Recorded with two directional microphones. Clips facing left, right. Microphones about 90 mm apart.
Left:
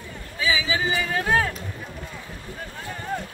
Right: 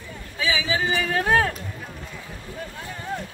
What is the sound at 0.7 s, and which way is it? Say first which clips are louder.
Speech: right 1 dB; 45° right (ahead or behind).